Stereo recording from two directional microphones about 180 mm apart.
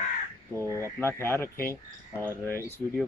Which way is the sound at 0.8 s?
15° left (ahead or behind).